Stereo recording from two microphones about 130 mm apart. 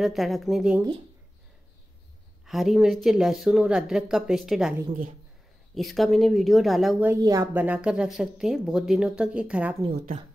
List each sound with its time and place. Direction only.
0.0 s speech: centre (ahead or behind)
2.4 s speech: centre (ahead or behind)
5.8 s speech: centre (ahead or behind)
7.2 s speech: 25° right (ahead or behind)
7.5 s speech: 10° right (ahead or behind)